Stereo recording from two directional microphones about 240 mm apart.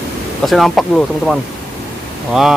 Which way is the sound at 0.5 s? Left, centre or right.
Centre.